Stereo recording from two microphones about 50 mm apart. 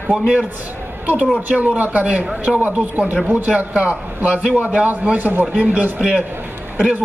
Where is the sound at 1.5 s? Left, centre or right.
Right.